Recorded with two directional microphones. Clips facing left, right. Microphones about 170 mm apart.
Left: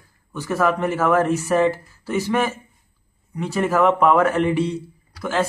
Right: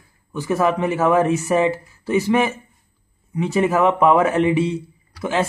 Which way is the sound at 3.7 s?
15° right (ahead or behind).